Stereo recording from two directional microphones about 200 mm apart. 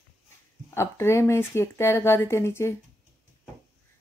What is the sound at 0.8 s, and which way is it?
Speech, 15° left (ahead or behind).